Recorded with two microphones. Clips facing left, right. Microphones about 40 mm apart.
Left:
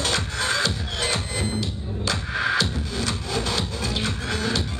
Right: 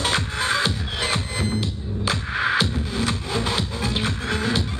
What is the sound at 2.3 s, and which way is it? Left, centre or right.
Music, centre.